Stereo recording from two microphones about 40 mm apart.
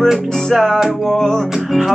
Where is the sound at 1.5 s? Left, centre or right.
Centre.